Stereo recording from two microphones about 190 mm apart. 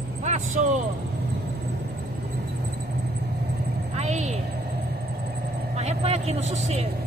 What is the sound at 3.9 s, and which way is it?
Speech, 35° right (ahead or behind).